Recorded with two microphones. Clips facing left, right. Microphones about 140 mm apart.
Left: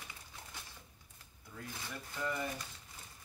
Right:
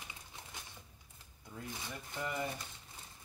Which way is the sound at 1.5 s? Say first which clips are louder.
Right 1 dB; 20° right (ahead or behind).